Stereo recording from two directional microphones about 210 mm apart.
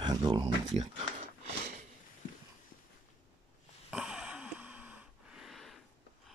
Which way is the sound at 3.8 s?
5° right (ahead or behind).